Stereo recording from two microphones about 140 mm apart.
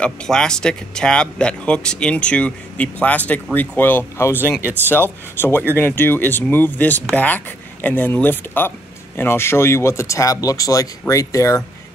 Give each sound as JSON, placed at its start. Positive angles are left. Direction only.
{"t": 0.0, "sound": "speech", "side_deg": 5}